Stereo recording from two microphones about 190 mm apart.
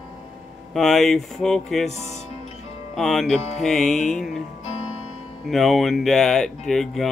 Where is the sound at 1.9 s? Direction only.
35° left (ahead or behind).